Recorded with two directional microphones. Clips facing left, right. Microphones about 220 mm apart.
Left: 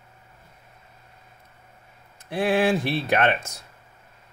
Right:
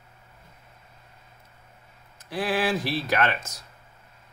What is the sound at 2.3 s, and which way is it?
Speech, 25° left (ahead or behind).